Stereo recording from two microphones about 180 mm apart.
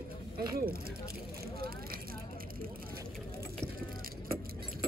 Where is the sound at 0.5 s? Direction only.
55° right (ahead or behind).